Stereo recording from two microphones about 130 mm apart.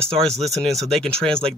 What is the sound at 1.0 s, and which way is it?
Speech, 5° left (ahead or behind).